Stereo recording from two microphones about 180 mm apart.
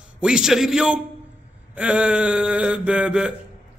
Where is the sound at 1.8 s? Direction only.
5° right (ahead or behind).